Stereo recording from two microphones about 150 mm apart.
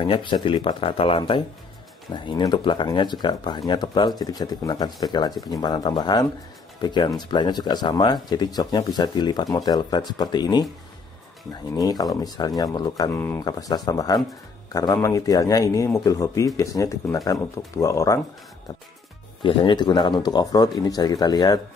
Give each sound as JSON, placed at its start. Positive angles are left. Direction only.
{"t": 0.0, "sound": "speech", "side_deg": 35}
{"t": 11.7, "sound": "speech", "side_deg": 25}
{"t": 19.4, "sound": "speech", "side_deg": 30}